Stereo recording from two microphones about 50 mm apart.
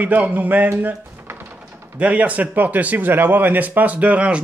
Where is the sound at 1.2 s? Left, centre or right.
Right.